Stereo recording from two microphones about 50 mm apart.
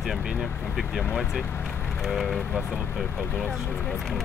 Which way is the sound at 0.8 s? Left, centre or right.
Centre.